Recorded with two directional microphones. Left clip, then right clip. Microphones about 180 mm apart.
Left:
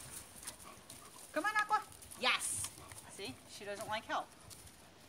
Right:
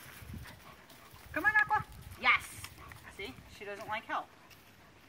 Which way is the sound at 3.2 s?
20° left (ahead or behind).